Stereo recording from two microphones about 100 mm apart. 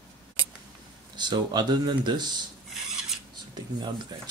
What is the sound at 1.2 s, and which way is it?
Speech, 45° right (ahead or behind).